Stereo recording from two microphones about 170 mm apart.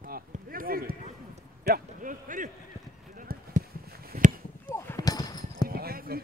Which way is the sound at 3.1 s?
55° right (ahead or behind).